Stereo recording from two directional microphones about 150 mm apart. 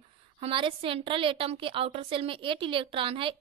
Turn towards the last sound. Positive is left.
turn(degrees=-35)  # may be behind; listen again after turning